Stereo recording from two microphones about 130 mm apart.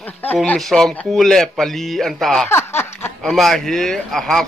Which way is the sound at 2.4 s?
20° left (ahead or behind).